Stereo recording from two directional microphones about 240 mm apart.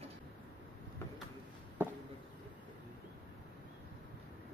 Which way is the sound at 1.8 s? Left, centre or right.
Centre.